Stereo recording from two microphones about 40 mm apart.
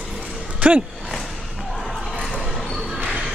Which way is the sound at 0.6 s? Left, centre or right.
Right.